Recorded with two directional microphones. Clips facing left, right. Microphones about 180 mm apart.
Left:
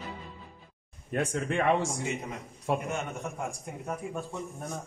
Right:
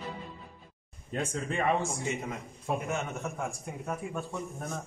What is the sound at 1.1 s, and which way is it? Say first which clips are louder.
Speech: left 4 dB; 60° left (ahead or behind).